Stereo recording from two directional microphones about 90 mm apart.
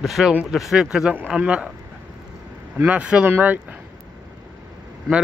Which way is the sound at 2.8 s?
15° right (ahead or behind).